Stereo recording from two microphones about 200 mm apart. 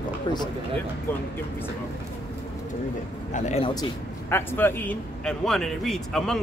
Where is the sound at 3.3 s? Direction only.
30° left (ahead or behind).